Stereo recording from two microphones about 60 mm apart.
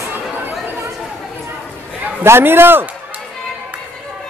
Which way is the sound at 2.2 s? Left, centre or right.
Right.